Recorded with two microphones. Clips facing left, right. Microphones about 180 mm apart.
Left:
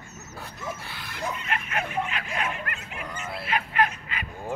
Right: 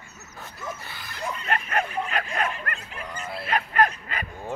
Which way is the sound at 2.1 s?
45° right (ahead or behind).